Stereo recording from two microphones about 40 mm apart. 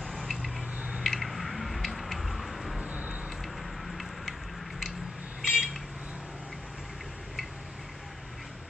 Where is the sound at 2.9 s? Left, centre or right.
Right.